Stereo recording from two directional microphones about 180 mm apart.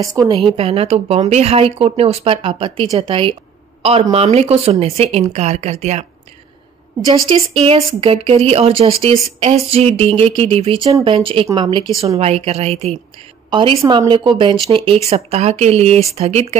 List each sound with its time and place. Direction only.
0.0 s speech: 20° right (ahead or behind); by 6.0 s 35° right (ahead or behind)
7.3 s a woman's voice: 35° right (ahead or behind)
12.2 s a woman's voice: 35° right (ahead or behind)